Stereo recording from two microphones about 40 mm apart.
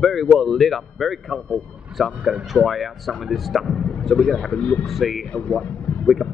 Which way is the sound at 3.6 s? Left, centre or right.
Centre.